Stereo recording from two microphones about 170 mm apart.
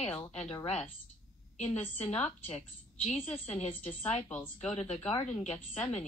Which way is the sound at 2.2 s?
40° left (ahead or behind).